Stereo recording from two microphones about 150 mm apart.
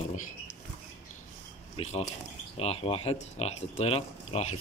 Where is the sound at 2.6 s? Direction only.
40° left (ahead or behind).